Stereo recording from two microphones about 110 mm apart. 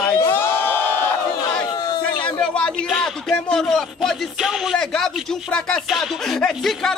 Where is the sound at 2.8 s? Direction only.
Centre (ahead or behind).